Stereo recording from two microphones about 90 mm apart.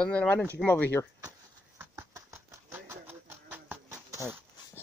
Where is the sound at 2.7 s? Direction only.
25° right (ahead or behind).